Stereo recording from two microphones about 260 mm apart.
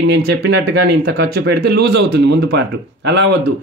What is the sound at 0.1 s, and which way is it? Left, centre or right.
Speech, right.